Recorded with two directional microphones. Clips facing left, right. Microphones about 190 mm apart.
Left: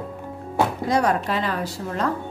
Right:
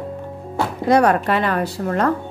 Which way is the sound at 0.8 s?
65° right (ahead or behind).